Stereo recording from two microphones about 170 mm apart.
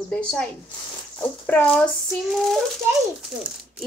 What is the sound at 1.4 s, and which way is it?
Speech, 5° left (ahead or behind).